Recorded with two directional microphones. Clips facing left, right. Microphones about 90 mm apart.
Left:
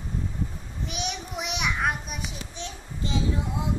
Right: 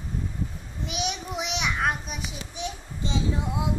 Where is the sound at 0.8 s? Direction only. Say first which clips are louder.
Right 3 dB; centre (ahead or behind).